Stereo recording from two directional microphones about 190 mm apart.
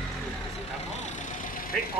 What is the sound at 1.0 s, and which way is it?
Vehicle, 40° left (ahead or behind).